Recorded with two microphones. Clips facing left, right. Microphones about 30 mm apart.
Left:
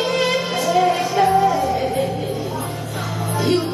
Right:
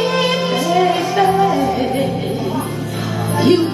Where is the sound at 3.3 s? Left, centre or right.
Right.